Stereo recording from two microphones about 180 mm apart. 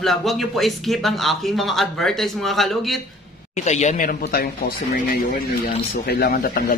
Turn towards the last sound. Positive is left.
turn(degrees=60)  # may be behind; listen again after turning